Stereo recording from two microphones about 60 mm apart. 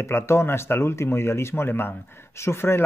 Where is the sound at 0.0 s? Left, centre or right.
Left.